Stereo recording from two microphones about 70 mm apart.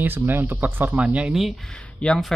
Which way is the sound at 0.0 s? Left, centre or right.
Right.